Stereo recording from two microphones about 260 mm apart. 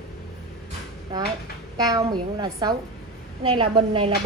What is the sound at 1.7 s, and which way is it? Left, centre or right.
A woman's voice, centre.